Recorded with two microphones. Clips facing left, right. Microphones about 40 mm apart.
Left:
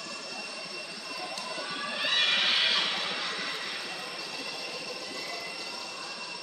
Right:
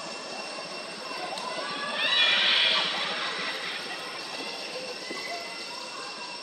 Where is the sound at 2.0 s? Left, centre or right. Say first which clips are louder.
Right 3 dB; right.